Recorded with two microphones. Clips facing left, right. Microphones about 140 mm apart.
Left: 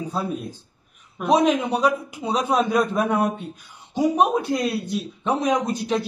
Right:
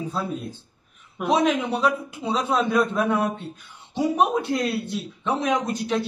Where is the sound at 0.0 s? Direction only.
15° left (ahead or behind).